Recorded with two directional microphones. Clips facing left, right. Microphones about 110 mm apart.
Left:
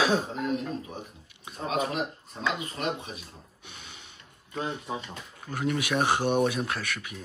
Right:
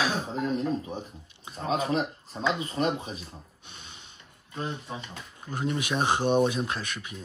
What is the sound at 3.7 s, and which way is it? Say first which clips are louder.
Snort: left 3 dB; 30° right (ahead or behind).